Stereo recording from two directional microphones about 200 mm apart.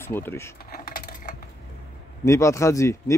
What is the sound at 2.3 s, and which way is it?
Speech, 15° left (ahead or behind).